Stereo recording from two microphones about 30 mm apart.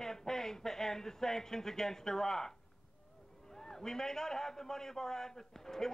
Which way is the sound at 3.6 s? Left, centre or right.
Centre.